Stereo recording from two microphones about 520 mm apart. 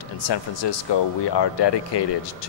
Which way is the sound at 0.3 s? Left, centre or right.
Left.